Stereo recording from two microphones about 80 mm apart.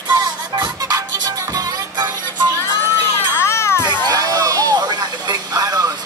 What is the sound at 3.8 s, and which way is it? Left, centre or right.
Music, right.